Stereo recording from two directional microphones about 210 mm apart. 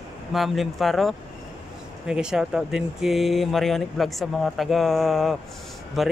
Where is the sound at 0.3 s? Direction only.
Centre (ahead or behind).